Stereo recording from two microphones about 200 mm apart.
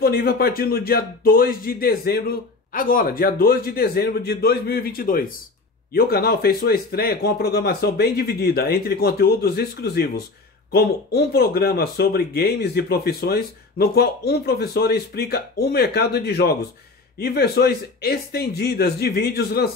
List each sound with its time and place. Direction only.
0.0 s speech: 50° left (ahead or behind)